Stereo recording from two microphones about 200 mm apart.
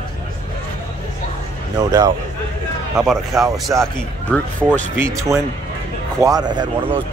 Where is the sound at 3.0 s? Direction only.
Centre (ahead or behind).